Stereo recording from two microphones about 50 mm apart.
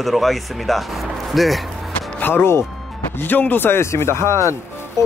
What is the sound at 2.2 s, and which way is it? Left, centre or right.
Speech, left.